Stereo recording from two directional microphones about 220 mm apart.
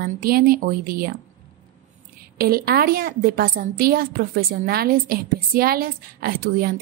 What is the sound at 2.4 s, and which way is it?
A woman's voice, 45° right (ahead or behind).